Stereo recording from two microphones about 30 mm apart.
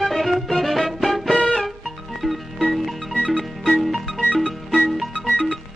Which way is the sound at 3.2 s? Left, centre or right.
Left.